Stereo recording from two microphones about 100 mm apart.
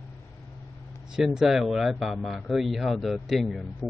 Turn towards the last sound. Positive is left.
turn(degrees=0)  # may be behind; listen again after turning